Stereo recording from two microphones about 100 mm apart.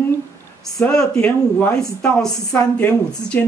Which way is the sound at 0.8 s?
5° left (ahead or behind).